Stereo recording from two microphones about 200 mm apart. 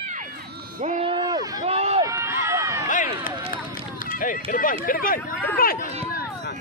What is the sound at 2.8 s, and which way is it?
Run, 45° left (ahead or behind).